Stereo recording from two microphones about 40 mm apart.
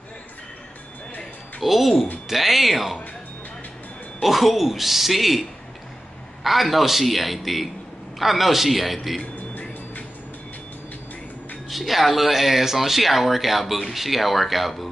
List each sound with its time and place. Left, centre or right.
1.6 s speech: centre
4.2 s speech: centre
9.5 s music: left
11.7 s speech: centre